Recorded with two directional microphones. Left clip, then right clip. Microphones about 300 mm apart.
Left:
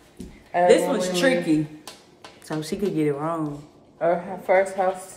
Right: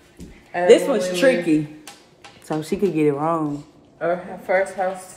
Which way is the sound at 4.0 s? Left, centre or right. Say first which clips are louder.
Left 1 dB; left.